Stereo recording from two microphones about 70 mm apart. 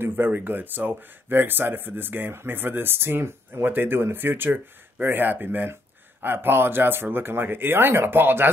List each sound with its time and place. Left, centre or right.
0.0 s speech: right